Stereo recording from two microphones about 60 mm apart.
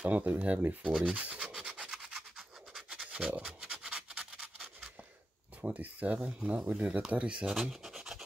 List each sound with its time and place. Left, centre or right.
0.0 s speech: right
1.4 s rub: centre
5.6 s speech: right
7.5 s scratch: centre